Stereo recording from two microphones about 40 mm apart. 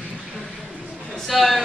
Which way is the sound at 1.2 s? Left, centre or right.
Centre.